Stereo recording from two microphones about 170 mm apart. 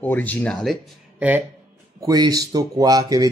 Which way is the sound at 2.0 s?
20° right (ahead or behind).